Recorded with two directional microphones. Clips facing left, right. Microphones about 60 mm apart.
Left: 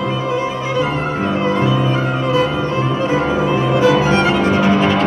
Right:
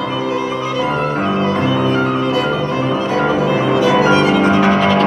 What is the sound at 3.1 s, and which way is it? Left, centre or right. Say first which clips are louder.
Music: right 2 dB; left.